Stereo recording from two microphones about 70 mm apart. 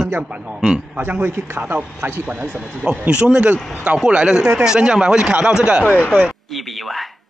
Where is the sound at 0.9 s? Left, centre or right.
Right; by 5.8 s centre.